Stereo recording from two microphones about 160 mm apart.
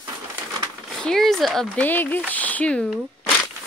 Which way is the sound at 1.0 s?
5° left (ahead or behind).